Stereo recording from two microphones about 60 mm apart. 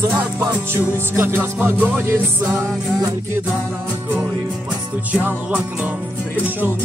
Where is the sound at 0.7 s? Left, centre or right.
Right.